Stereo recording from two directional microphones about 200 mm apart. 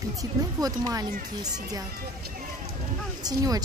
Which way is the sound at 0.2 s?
20° right (ahead or behind).